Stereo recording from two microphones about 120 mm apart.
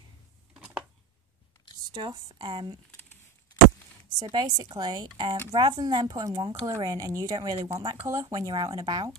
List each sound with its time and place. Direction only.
1.9 s a woman's voice: 40° right (ahead or behind)
4.2 s a woman's voice: 40° right (ahead or behind)